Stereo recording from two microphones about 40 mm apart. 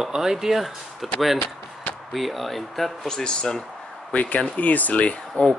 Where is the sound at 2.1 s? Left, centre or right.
Centre.